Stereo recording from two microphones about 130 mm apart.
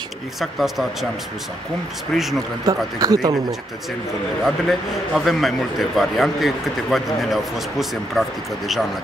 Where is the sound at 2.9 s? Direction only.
30° right (ahead or behind).